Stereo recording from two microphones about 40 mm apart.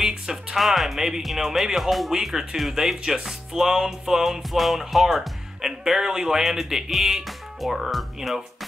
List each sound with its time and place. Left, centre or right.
0.0 s music: centre
0.6 s speech: centre